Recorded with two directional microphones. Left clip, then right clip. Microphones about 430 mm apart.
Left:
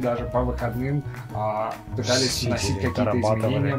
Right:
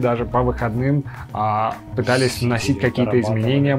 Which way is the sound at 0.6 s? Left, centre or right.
Right.